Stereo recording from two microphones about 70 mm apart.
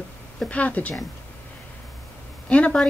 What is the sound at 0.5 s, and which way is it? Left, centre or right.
Speech, centre.